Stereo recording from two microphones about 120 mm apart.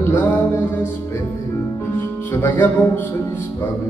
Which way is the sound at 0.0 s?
15° left (ahead or behind).